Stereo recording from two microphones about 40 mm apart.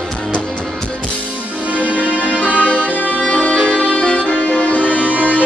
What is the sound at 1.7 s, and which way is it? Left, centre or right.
Music, right.